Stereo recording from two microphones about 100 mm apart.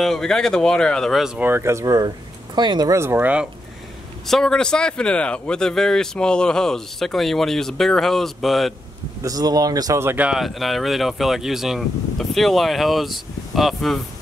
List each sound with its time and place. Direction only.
0.0 s speech: 5° left (ahead or behind)
1.4 s speech: 25° right (ahead or behind); by 2.9 s 45° right (ahead or behind)
2.9 s speech: 25° right (ahead or behind)
4.3 s speech: 5° left (ahead or behind)
9.2 s speech: 40° right (ahead or behind)
9.9 s speech: 25° right (ahead or behind)
10.2 s speech: centre (ahead or behind)